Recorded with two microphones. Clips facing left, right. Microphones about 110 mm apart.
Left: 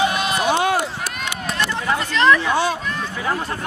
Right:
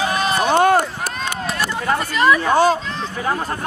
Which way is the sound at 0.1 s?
35° right (ahead or behind).